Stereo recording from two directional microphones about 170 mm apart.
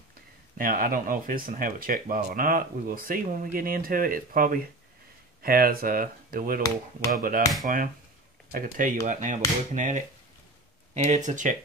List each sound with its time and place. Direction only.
0.6 s speech: 55° right (ahead or behind)